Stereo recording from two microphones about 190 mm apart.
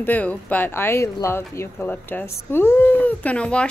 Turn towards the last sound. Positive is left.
turn(degrees=5)  # may be behind; listen again after turning